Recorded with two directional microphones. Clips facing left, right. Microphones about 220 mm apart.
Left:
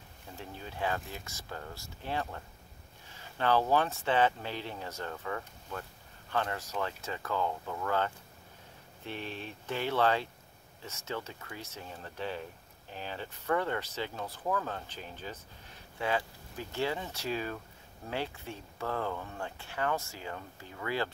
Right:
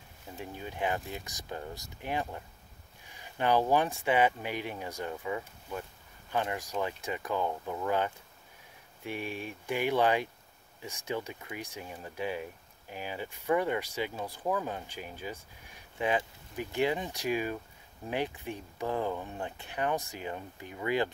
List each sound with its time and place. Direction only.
0.4 s speech: 15° right (ahead or behind)